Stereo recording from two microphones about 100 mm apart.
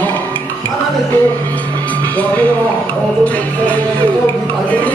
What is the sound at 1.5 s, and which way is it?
Music, 15° left (ahead or behind).